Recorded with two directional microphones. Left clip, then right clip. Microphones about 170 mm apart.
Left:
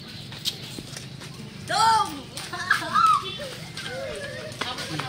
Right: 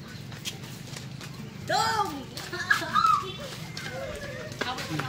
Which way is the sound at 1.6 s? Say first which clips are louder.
Left 5 dB; 70° right (ahead or behind).